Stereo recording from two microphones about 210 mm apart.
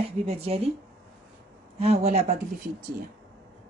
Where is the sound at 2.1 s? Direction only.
30° right (ahead or behind).